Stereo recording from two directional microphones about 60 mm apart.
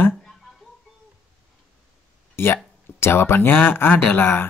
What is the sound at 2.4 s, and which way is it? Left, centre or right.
Speech, left.